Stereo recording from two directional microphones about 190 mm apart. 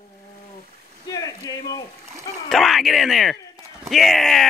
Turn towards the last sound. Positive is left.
turn(degrees=0)  # may be behind; listen again after turning